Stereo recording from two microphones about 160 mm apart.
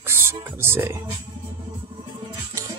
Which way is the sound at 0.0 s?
15° right (ahead or behind).